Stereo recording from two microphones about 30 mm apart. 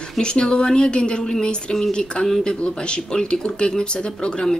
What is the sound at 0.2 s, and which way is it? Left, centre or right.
Speech, left.